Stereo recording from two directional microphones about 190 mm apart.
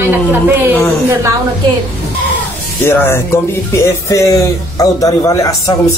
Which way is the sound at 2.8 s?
10° left (ahead or behind).